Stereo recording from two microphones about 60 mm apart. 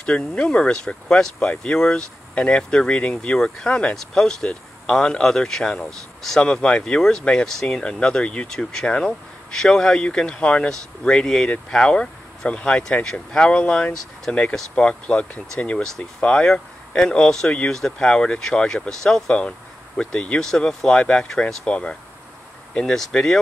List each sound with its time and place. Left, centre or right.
0.0 s speech: centre
23.1 s speech: centre